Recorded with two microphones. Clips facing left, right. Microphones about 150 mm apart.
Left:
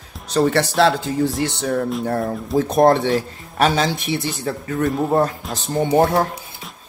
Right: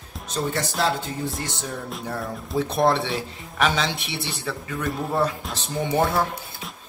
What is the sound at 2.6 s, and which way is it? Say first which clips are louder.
A man's voice: left 6 dB; 45° left (ahead or behind).